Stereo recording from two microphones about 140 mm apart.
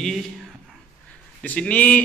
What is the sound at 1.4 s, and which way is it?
Speech, 10° left (ahead or behind).